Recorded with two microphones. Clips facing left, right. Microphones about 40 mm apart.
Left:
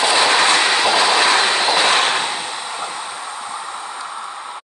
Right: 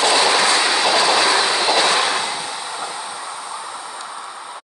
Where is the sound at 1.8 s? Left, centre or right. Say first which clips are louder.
Left 2 dB; left.